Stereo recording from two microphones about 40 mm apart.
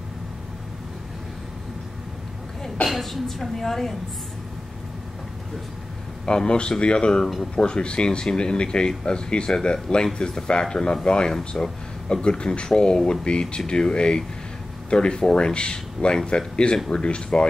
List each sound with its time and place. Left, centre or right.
2.9 s a woman's voice: centre
6.2 s speech: left